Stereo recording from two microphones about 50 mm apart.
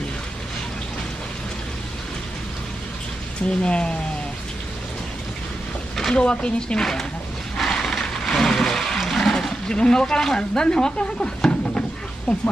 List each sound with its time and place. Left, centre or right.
3.4 s speech: centre
5.9 s speech: centre
6.8 s speech: centre
7.5 s a sound: centre
9.0 s speech: centre